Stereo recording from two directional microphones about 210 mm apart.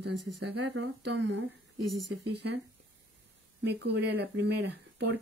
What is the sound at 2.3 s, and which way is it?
Speech, 50° right (ahead or behind).